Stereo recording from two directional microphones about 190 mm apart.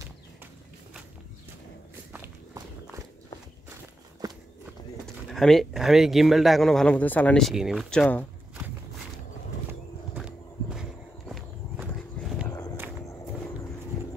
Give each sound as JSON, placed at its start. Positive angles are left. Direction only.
{"t": 2.1, "sound": "walk", "side_deg": -10}
{"t": 5.0, "sound": "speech", "side_deg": 0}
{"t": 10.1, "sound": "walk", "side_deg": -5}
{"t": 12.4, "sound": "walk", "side_deg": 15}
{"t": 13.0, "sound": "a sound", "side_deg": 15}